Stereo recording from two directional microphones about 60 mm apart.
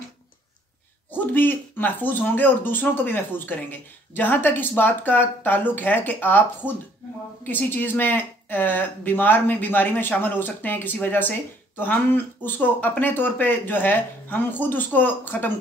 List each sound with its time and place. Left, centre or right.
1.1 s speech: left